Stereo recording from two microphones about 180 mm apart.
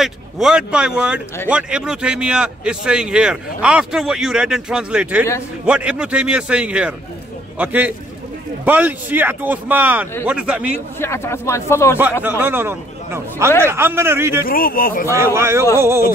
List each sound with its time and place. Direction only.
0.0 s a man's voice: 5° right (ahead or behind)
11.0 s speech: 15° left (ahead or behind)
12.0 s a man's voice: 10° right (ahead or behind)
14.4 s speech: 55° left (ahead or behind)
15.0 s a man's voice: 15° right (ahead or behind)